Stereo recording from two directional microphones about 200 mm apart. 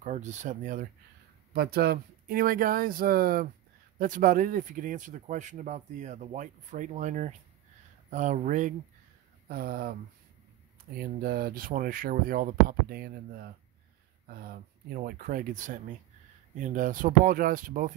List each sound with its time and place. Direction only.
0.0 s speech: 35° right (ahead or behind)
11.0 s speech: 50° right (ahead or behind)